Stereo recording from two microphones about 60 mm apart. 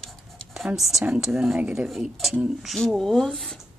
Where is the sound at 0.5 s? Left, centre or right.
Centre.